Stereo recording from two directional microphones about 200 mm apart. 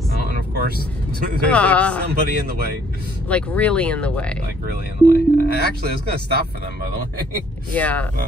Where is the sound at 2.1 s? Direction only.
50° right (ahead or behind).